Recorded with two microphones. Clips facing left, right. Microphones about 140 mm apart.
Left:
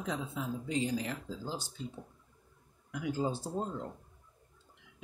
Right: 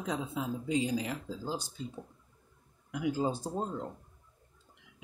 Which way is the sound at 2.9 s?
10° right (ahead or behind).